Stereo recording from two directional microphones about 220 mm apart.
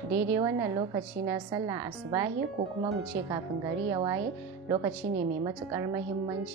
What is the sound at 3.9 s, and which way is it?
Speech, 15° right (ahead or behind).